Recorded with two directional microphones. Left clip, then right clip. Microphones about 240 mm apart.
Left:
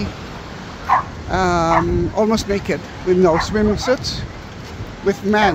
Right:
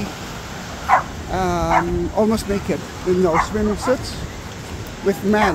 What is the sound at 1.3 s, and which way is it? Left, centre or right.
Speech, centre.